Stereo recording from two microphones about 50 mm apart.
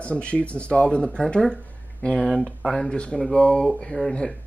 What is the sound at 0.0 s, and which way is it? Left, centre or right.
Speech, left.